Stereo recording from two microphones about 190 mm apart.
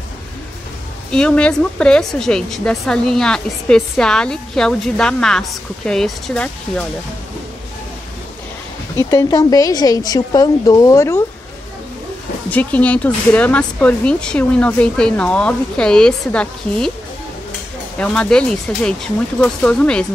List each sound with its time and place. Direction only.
1.1 s a woman's voice: 5° left (ahead or behind)
8.9 s a woman's voice: 15° left (ahead or behind)
12.4 s a woman's voice: 10° left (ahead or behind)
17.9 s a woman's voice: 5° left (ahead or behind)